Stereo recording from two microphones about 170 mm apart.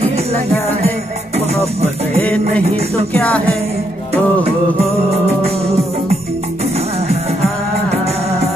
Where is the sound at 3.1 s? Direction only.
5° left (ahead or behind).